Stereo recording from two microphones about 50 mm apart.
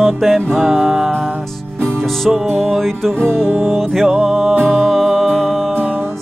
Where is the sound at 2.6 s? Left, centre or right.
Centre.